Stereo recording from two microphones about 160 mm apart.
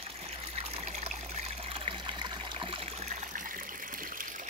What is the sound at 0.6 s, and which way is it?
Trickle, 40° right (ahead or behind).